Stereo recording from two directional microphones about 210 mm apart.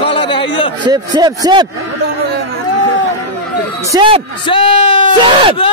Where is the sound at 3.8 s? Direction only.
25° right (ahead or behind).